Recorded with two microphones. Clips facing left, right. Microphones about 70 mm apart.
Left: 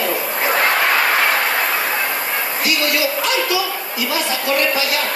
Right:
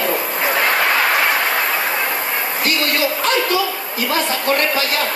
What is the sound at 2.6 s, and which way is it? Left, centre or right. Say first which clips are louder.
A woman's voice: even; right.